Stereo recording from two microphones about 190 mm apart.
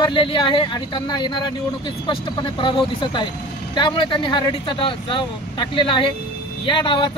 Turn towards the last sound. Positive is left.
turn(degrees=25)  # may be behind; listen again after turning